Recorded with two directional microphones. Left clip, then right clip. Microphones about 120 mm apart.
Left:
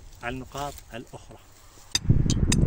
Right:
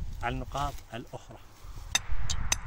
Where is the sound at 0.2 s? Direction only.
25° right (ahead or behind).